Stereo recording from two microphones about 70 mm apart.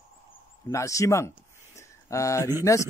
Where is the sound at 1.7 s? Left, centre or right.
Left.